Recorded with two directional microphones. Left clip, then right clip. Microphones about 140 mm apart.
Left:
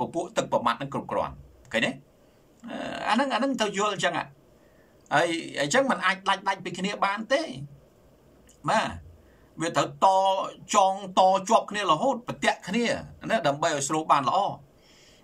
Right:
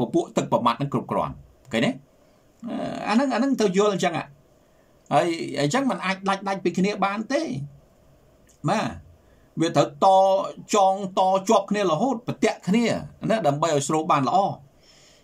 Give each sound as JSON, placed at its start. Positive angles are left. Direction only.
{"t": 0.0, "sound": "speech", "side_deg": -30}
{"t": 8.6, "sound": "speech", "side_deg": -35}